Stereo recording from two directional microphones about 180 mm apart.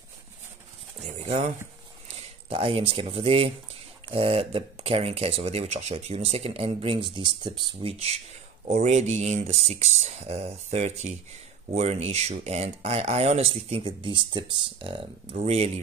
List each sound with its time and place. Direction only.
1.0 s speech: 35° right (ahead or behind)
2.5 s speech: 30° right (ahead or behind)